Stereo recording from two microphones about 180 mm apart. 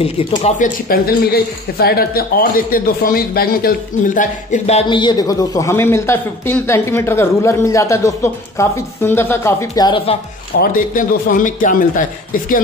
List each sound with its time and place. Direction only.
0.0 s speech: 30° left (ahead or behind)
0.6 s speech: 55° left (ahead or behind); by 10.1 s 25° left (ahead or behind)
10.6 s speech: 50° left (ahead or behind)